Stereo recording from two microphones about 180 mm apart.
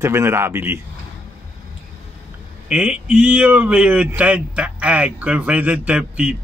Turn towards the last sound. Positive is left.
turn(degrees=-5)  # may be behind; listen again after turning